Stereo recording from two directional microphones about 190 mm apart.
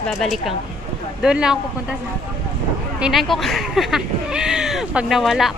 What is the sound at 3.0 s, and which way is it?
A woman's voice, centre (ahead or behind).